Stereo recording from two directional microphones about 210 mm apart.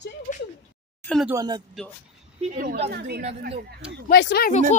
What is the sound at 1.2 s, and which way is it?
Speech, 15° right (ahead or behind).